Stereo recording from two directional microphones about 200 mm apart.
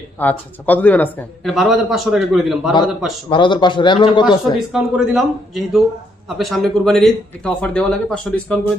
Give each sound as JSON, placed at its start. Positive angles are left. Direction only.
{"t": 0.2, "sound": "a man's voice", "side_deg": 10}
{"t": 3.3, "sound": "a man's voice", "side_deg": 25}
{"t": 4.2, "sound": "a man's voice", "side_deg": 0}